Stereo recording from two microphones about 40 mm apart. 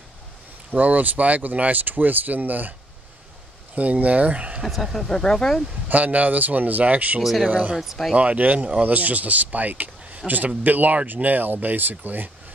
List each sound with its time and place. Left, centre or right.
0.7 s speech: right
3.7 s speech: right
4.6 s speech: centre
5.1 s speech: centre
5.9 s speech: right
7.2 s speech: centre
7.4 s speech: right
7.7 s speech: centre
8.2 s speech: right